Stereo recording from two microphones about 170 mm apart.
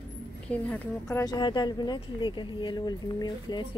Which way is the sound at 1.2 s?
25° left (ahead or behind).